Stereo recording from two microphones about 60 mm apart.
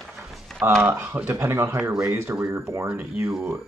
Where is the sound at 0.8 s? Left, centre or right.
Right.